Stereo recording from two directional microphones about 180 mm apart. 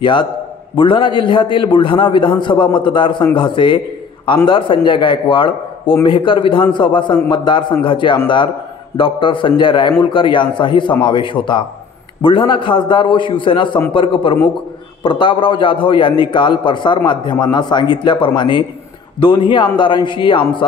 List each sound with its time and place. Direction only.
0.0 s a man's voice: 25° left (ahead or behind)